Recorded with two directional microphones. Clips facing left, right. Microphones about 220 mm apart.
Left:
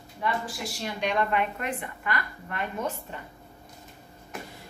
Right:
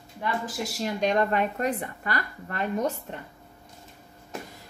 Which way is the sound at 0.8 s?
40° right (ahead or behind).